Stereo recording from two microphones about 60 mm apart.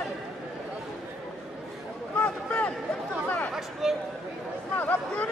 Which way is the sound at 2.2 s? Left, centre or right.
Left.